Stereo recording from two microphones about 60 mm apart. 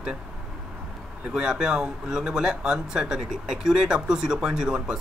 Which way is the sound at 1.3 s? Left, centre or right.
Centre.